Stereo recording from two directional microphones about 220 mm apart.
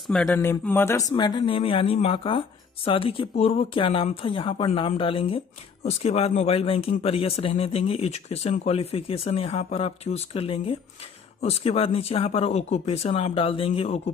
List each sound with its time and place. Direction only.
0.0 s speech: centre (ahead or behind); by 14.1 s 30° left (ahead or behind)